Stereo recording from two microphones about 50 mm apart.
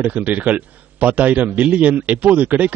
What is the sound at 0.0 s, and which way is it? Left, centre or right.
A man's voice, right.